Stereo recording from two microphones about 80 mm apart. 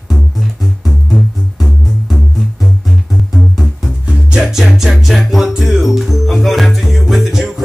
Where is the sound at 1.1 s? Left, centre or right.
Centre.